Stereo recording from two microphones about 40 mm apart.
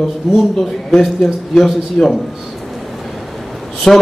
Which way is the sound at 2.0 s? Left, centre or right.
Left.